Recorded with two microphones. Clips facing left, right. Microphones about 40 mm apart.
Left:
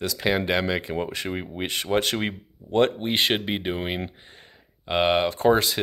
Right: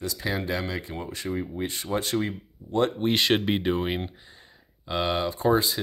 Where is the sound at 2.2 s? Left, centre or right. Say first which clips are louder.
Even; left.